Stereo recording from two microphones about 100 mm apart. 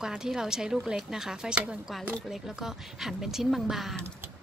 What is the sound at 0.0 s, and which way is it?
A woman's voice, 5° right (ahead or behind).